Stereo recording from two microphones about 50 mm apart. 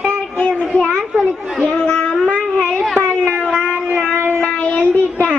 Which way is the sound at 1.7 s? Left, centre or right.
Left.